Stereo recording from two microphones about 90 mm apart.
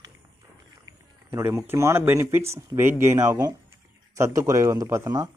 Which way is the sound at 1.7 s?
30° right (ahead or behind).